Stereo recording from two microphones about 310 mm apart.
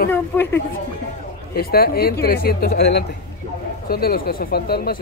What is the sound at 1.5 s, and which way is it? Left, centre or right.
Speech, left.